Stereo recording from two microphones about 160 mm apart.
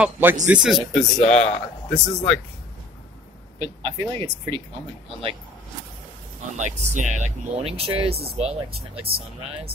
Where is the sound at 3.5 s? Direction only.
35° right (ahead or behind).